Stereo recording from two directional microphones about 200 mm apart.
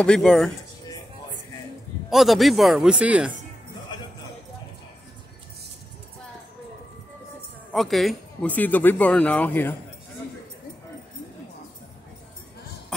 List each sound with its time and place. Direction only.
0.0 s speech: 5° left (ahead or behind)
2.0 s speech: centre (ahead or behind)
3.9 s music: 20° left (ahead or behind)
7.7 s speech: centre (ahead or behind)